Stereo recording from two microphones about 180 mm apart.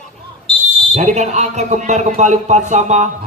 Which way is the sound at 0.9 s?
40° right (ahead or behind).